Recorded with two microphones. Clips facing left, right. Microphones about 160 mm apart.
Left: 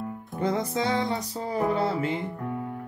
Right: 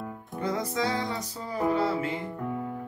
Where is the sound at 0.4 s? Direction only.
25° left (ahead or behind).